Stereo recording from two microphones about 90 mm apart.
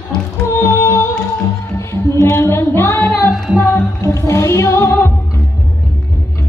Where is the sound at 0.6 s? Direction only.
30° left (ahead or behind).